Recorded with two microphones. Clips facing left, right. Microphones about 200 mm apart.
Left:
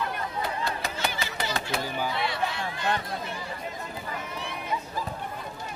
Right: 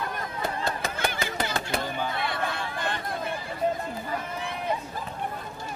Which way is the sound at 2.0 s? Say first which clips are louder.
Left 1 dB; 55° right (ahead or behind).